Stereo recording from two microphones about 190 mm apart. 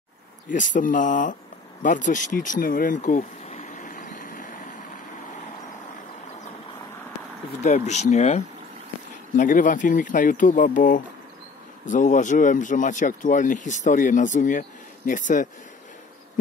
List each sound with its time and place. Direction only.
0.5 s speech: 45° left (ahead or behind)
1.8 s a sound: 40° left (ahead or behind)
7.6 s speech: 40° left (ahead or behind)
9.4 s speech: 45° left (ahead or behind)